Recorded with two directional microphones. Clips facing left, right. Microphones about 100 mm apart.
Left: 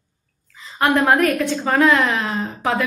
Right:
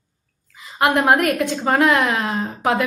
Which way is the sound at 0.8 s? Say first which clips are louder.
Even; 15° right (ahead or behind).